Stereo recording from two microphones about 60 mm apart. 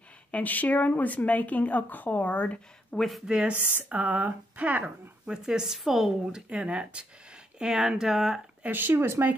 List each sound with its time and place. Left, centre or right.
0.3 s speech: left
3.0 s speech: centre
3.3 s a woman's voice: centre
3.5 s speech: right
5.2 s a woman's voice: centre
8.6 s speech: right